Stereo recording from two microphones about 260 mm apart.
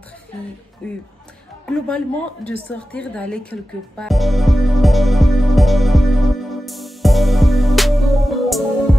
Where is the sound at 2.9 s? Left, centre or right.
Centre.